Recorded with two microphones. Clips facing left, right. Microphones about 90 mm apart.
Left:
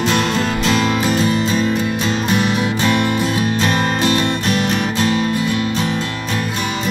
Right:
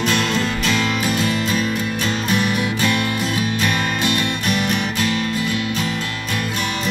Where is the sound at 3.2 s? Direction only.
35° left (ahead or behind).